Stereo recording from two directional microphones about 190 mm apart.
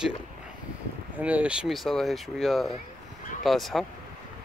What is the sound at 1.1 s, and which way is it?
Speech, 5° right (ahead or behind).